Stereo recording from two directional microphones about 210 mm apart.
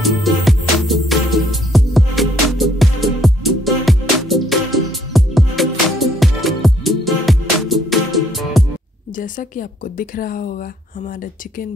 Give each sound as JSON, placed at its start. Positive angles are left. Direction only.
{"t": 0.0, "sound": "music", "side_deg": 0}
{"t": 9.1, "sound": "speech", "side_deg": 40}